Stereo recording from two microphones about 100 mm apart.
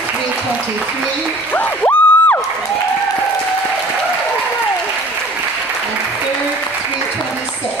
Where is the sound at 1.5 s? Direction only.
15° left (ahead or behind).